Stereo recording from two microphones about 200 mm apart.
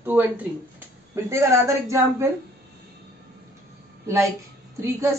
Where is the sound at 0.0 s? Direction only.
10° right (ahead or behind).